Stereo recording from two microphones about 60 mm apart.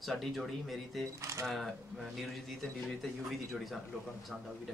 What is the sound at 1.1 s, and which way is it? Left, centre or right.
Speech, right.